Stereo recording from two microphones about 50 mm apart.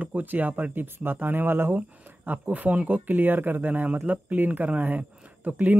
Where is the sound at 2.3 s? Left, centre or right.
Right.